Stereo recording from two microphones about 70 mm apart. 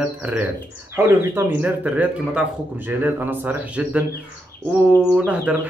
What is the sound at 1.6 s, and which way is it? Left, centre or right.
Speech, right.